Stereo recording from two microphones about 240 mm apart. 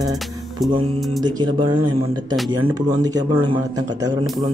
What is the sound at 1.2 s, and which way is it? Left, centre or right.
A man's voice, centre.